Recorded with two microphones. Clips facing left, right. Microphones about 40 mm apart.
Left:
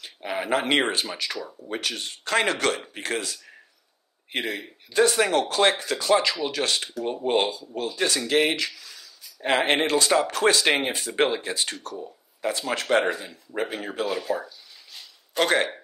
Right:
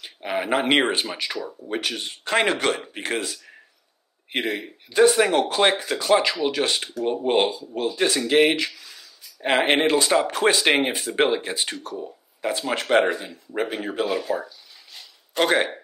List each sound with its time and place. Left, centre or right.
0.0 s speech: centre